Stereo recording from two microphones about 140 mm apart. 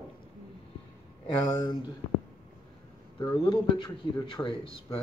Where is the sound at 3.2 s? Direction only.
30° left (ahead or behind).